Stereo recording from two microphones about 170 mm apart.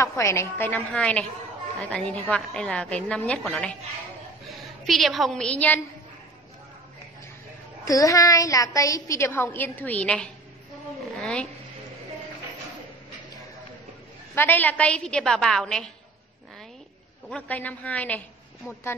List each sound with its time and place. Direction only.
0.0 s a woman's voice: 15° left (ahead or behind)
4.8 s a woman's voice: centre (ahead or behind)
7.8 s a woman's voice: 20° left (ahead or behind)
11.1 s a sound: 5° left (ahead or behind)
14.3 s a woman's voice: 10° left (ahead or behind)
17.3 s a woman's voice: 10° left (ahead or behind)